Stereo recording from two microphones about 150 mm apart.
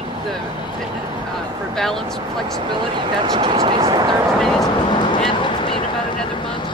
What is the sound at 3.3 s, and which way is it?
Speech, 30° right (ahead or behind).